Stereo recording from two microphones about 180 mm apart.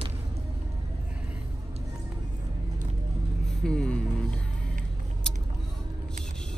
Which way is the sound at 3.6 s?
5° left (ahead or behind).